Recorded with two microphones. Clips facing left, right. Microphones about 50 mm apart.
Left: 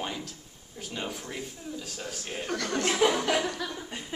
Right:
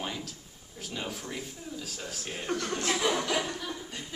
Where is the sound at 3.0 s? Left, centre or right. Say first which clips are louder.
Left 6 dB; left.